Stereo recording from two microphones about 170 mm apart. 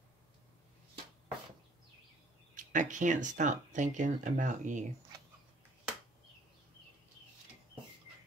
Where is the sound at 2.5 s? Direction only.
50° right (ahead or behind).